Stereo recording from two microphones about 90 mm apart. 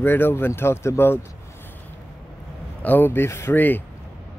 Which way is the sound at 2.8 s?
20° left (ahead or behind).